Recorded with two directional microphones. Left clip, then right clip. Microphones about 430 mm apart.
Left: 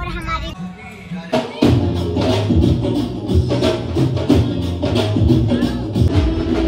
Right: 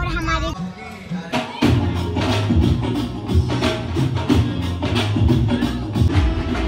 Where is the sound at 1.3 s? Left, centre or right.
Centre.